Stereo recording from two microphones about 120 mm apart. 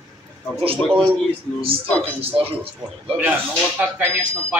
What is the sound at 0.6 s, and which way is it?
Speech, 50° right (ahead or behind).